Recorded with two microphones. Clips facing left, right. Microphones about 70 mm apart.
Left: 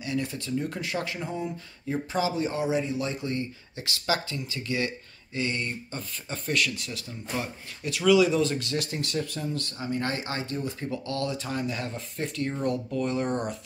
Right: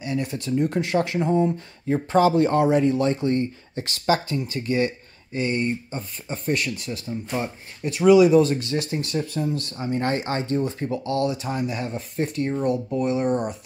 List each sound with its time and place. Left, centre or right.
0.0 s speech: right
2.1 s speech: right
13.2 s speech: centre